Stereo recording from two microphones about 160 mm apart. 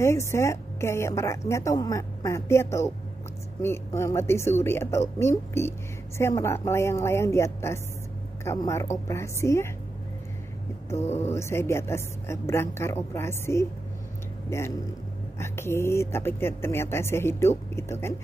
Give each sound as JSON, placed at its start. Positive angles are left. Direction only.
{"t": 0.0, "sound": "a woman's voice", "side_deg": 15}
{"t": 11.2, "sound": "a woman's voice", "side_deg": 15}